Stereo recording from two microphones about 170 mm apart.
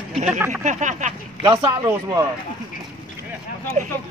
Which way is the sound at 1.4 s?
25° right (ahead or behind).